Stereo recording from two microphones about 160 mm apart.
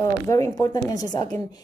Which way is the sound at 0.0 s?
20° left (ahead or behind).